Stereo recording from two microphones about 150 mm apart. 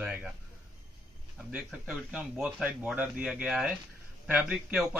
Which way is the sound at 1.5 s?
5° right (ahead or behind).